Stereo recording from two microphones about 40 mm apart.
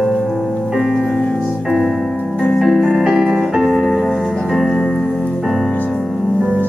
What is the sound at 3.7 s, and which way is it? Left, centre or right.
Music, centre.